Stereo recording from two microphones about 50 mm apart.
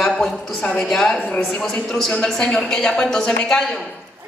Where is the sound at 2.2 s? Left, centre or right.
Centre.